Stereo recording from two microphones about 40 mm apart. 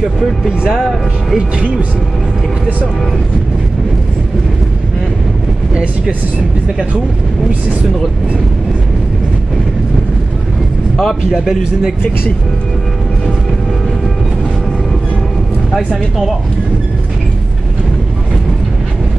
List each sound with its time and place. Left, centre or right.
0.7 s speech: centre
11.3 s speech: centre